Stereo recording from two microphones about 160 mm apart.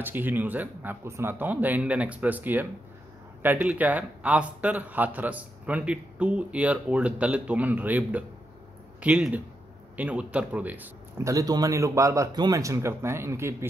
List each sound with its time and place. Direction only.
0.0 s speech: 10° right (ahead or behind)